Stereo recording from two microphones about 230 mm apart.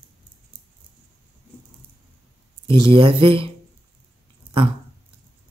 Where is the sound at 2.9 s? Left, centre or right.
Right.